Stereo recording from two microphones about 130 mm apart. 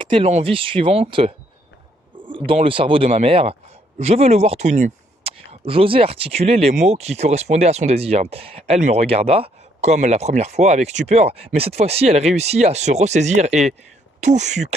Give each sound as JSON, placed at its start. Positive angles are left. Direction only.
{"t": 0.0, "sound": "speech", "side_deg": -40}
{"t": 5.2, "sound": "speech", "side_deg": -50}
{"t": 9.0, "sound": "speech", "side_deg": -50}